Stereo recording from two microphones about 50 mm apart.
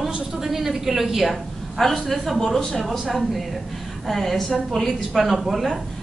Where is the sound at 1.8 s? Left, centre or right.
Centre.